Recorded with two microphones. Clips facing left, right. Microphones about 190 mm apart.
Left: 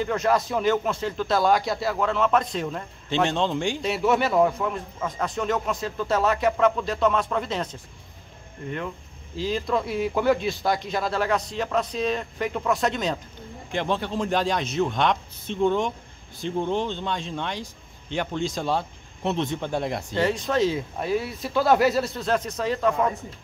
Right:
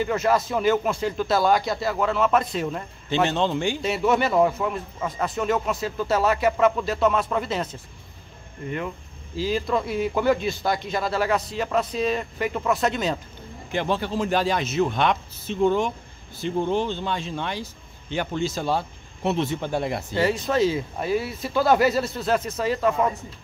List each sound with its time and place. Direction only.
0.0 s speech: 5° right (ahead or behind)